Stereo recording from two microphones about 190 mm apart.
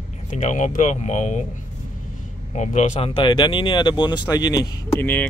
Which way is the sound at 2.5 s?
40° left (ahead or behind).